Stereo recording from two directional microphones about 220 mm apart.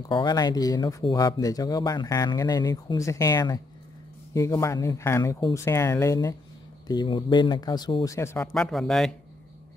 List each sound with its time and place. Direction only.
0.1 s speech: 20° left (ahead or behind)
8.5 s speech: centre (ahead or behind)